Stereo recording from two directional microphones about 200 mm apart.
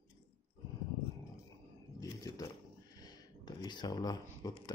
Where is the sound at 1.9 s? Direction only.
15° left (ahead or behind).